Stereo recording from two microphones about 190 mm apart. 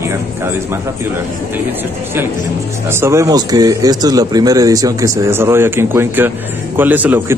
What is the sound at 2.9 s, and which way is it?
Speech, 15° right (ahead or behind).